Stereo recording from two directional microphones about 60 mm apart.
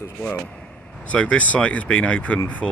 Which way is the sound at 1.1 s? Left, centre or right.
Left.